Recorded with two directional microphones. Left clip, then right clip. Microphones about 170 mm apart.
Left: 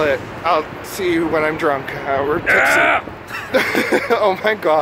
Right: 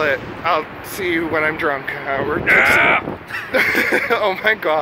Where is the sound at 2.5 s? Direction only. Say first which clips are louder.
Right 1 dB; 40° left (ahead or behind).